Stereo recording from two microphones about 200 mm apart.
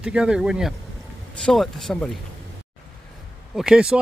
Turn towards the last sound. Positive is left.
turn(degrees=-5)  # may be behind; listen again after turning